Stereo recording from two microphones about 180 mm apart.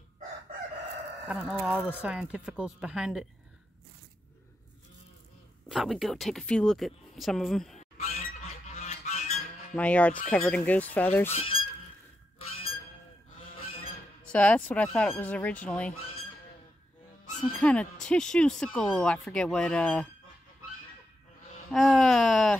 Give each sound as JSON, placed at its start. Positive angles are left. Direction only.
{"t": 1.3, "sound": "speech", "side_deg": -5}
{"t": 5.7, "sound": "speech", "side_deg": 0}
{"t": 8.0, "sound": "squawk", "side_deg": 35}
{"t": 8.7, "sound": "goose", "side_deg": 35}
{"t": 9.8, "sound": "speech", "side_deg": 5}
{"t": 11.3, "sound": "speech", "side_deg": 30}
{"t": 13.6, "sound": "goose", "side_deg": 30}
{"t": 14.2, "sound": "speech", "side_deg": 5}
{"t": 17.6, "sound": "speech", "side_deg": 5}
{"t": 21.7, "sound": "speech", "side_deg": 5}